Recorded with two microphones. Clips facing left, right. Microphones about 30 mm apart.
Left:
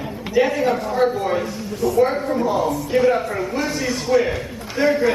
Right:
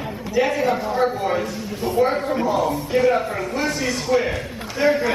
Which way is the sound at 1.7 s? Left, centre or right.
Right.